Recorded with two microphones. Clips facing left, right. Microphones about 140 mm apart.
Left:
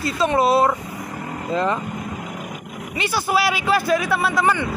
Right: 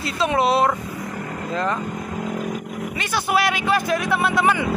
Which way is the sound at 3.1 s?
5° left (ahead or behind).